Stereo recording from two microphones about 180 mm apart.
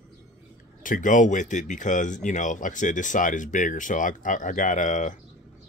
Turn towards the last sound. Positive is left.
turn(degrees=45)  # may be behind; listen again after turning